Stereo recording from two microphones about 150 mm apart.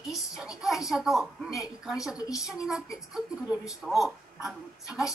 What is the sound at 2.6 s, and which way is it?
Speech, 5° right (ahead or behind).